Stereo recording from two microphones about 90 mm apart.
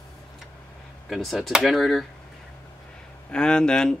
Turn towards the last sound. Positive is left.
turn(degrees=10)  # may be behind; listen again after turning